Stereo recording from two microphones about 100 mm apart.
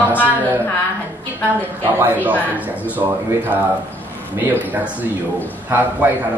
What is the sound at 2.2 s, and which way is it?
Speech, 15° right (ahead or behind).